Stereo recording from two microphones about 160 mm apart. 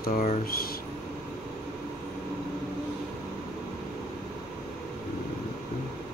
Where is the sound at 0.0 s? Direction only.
65° left (ahead or behind).